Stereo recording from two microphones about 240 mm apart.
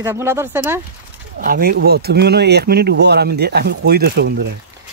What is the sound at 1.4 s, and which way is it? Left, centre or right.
Speech, right.